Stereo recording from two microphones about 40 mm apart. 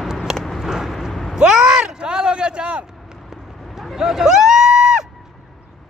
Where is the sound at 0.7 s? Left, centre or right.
Centre.